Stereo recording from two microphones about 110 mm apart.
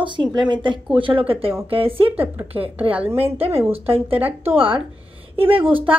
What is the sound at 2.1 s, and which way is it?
A woman's voice, 20° right (ahead or behind).